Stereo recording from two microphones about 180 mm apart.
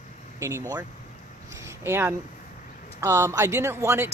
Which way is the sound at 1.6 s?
15° right (ahead or behind).